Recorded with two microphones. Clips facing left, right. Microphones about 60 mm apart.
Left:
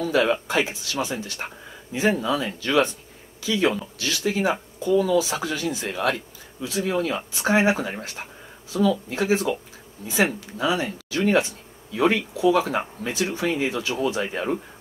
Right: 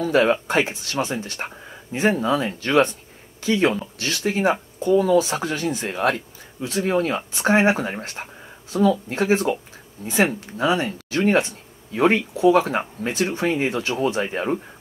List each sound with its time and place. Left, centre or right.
0.0 s speech: right